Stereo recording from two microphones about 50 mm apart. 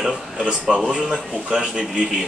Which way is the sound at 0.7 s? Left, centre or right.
Centre.